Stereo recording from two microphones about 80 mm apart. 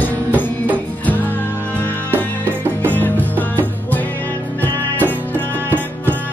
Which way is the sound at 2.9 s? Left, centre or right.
Left.